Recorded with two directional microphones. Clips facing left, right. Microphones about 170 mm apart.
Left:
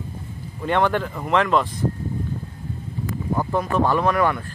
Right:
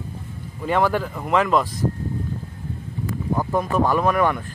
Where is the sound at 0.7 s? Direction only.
5° right (ahead or behind).